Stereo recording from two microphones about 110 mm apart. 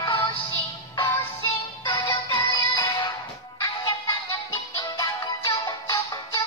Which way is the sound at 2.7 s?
35° left (ahead or behind).